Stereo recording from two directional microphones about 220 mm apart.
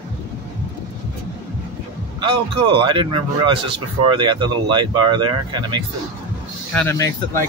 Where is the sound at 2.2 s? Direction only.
20° right (ahead or behind).